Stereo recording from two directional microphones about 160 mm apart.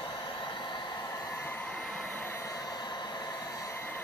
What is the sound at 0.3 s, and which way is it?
Hair dryer, 30° left (ahead or behind).